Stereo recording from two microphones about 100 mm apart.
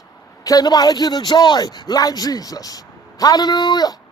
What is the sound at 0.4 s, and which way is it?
A man's voice, 40° left (ahead or behind).